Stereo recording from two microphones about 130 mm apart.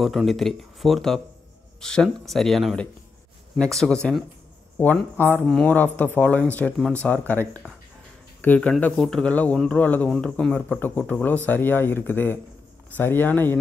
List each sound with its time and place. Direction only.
0.0 s speech: centre (ahead or behind)
5.1 s speech: 15° left (ahead or behind)